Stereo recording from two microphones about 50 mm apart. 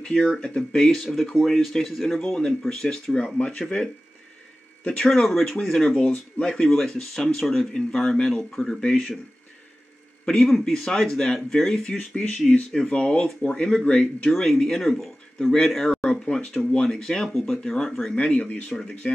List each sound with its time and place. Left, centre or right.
0.0 s speech: centre
5.0 s speech: centre
5.9 s speech: left
6.5 s speech: centre
10.2 s speech: centre
11.8 s speech: left
14.3 s speech: centre
17.3 s speech: centre
18.1 s speech: centre